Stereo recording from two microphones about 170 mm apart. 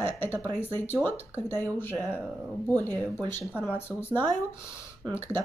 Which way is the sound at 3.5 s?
10° right (ahead or behind).